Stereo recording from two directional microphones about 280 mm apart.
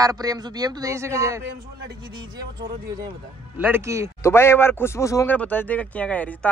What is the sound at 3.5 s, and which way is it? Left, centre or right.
Speech, centre.